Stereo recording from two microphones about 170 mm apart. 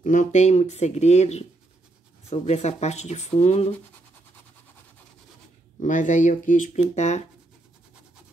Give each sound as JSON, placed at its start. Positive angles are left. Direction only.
{"t": 0.0, "sound": "speech", "side_deg": 50}
{"t": 5.8, "sound": "speech", "side_deg": 50}